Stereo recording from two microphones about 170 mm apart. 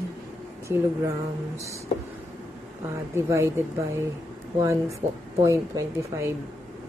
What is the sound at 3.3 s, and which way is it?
Speech, 15° right (ahead or behind).